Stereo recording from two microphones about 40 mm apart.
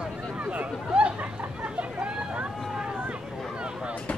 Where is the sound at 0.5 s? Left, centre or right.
Right.